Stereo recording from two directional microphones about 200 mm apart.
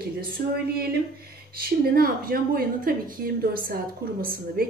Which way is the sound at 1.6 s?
50° right (ahead or behind).